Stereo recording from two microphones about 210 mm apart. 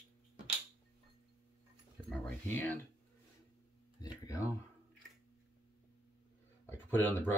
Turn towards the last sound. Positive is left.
turn(degrees=10)  # may be behind; listen again after turning